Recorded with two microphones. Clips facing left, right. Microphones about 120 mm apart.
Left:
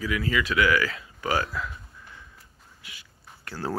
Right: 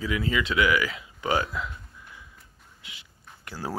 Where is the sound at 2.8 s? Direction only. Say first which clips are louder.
Even; 20° right (ahead or behind).